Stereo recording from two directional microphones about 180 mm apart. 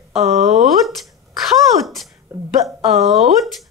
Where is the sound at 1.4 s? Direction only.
Centre (ahead or behind).